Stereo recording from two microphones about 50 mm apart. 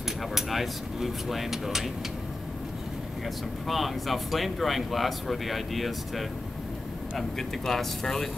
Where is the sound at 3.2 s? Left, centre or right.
Centre.